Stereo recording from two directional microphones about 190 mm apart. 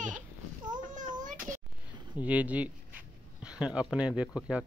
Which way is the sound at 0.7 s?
40° right (ahead or behind).